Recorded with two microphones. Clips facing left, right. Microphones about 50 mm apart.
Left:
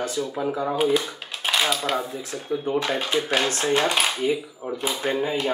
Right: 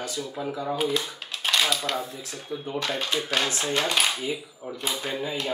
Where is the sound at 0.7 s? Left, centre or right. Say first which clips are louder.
Left 4 dB; centre.